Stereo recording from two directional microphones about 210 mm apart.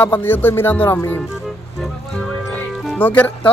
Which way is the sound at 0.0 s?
10° left (ahead or behind).